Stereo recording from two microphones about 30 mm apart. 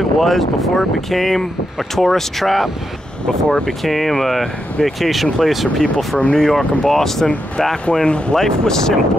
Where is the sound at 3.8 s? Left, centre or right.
Centre.